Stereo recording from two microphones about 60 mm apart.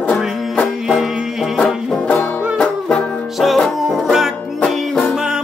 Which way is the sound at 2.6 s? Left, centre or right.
Centre.